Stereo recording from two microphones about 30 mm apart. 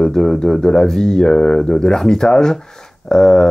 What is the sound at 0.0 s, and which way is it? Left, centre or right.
Speech, centre.